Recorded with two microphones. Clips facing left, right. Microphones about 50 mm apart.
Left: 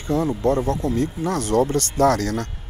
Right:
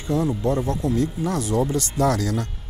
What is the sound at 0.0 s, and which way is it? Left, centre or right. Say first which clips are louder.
Speech: left 2 dB; left.